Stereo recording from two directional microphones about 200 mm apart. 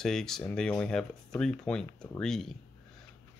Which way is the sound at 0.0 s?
Centre (ahead or behind).